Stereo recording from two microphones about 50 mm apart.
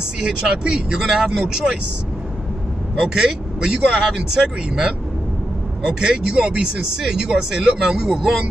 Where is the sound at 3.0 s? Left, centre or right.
Centre.